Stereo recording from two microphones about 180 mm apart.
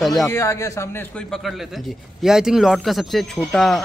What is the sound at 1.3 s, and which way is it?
A man's voice, centre (ahead or behind).